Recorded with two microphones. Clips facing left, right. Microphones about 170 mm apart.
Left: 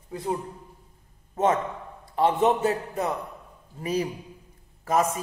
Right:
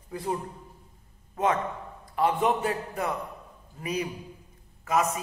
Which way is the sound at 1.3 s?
25° left (ahead or behind).